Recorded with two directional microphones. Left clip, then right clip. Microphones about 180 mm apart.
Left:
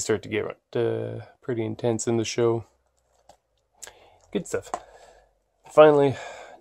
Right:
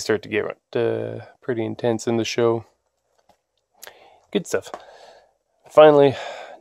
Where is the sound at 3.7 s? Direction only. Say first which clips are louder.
Right 3 dB; 30° right (ahead or behind).